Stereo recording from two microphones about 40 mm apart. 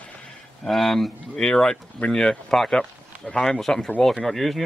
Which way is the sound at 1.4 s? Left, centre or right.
Centre.